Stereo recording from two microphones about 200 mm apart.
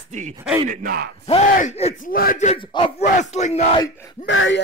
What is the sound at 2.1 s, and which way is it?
Speech, 45° left (ahead or behind).